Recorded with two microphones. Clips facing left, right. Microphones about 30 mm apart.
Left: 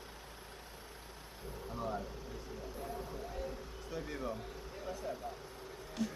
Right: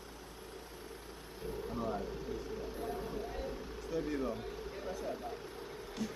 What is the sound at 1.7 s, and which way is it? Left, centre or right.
Vehicle, centre.